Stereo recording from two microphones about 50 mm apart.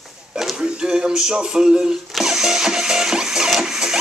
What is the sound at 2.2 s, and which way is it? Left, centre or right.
Music, centre.